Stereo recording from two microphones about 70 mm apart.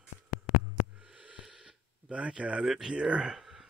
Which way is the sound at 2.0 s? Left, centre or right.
Centre.